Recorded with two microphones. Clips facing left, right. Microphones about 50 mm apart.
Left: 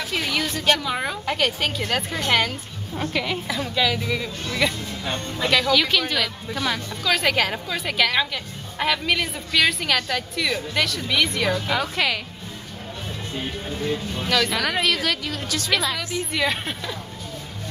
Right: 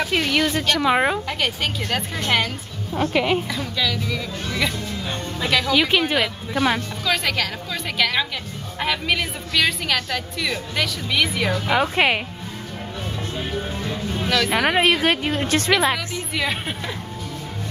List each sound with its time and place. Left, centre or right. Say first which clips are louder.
0.3 s speech: right 5 dB; centre
0.8 s a woman's voice: right 8 dB; right
1.2 s a woman's voice: left 1 dB; centre
3.1 s speech: right 5 dB; centre
3.4 s speech: left 2 dB; centre
4.6 s a woman's voice: left 3 dB; centre
5.7 s speech: right 2 dB; centre
7.2 s speech: left 3 dB; centre
7.7 s a woman's voice: right 1 dB; centre
11.7 s a woman's voice: right 4 dB; right
13.8 s speech: left 2 dB; centre
14.6 s a woman's voice: right 5 dB; right
16.3 s speech: even; centre